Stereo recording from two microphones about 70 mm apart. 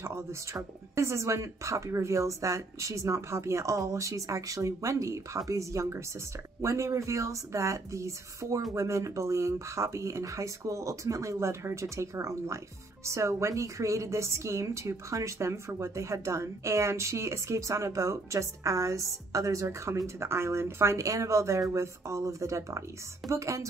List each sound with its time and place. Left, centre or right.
0.0 s a woman's voice: right